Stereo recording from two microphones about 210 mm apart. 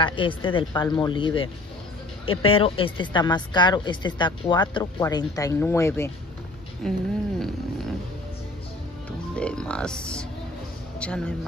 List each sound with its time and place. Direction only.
0.0 s a woman's voice: 25° left (ahead or behind)
6.8 s speech: centre (ahead or behind)
9.3 s speech: 5° left (ahead or behind)